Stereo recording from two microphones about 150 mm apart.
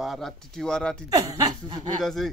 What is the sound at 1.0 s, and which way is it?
Speech, 25° right (ahead or behind).